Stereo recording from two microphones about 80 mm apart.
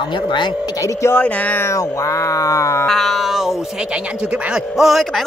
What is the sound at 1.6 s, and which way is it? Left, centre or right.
Cat, left.